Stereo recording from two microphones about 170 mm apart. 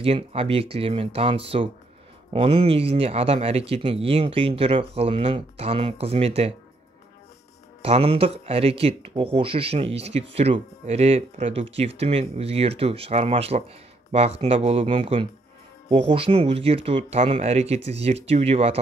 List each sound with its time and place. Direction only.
0.0 s speech: 35° right (ahead or behind)
7.8 s speech: 35° right (ahead or behind)